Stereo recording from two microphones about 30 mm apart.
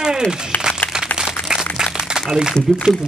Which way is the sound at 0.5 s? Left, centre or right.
Left.